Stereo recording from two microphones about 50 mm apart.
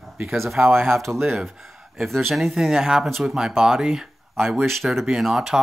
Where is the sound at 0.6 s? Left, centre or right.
Right.